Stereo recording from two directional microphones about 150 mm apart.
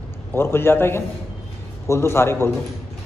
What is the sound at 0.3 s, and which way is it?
A man's voice, 15° left (ahead or behind).